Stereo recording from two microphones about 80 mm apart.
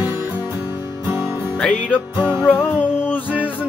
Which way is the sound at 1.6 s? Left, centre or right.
Centre.